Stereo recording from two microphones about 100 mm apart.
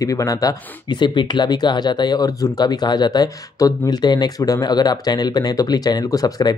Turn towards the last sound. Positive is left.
turn(degrees=40)  # may be behind; listen again after turning